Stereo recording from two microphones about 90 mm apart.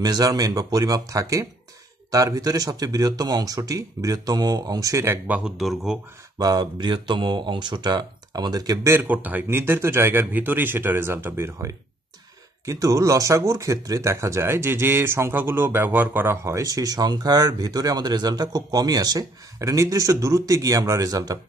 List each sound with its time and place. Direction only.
0.0 s speech: 45° right (ahead or behind)
5.2 s speech: 15° right (ahead or behind)
5.6 s speech: 5° right (ahead or behind)
6.3 s speech: 50° right (ahead or behind)
8.8 s speech: 20° right (ahead or behind)
16.5 s speech: 40° right (ahead or behind)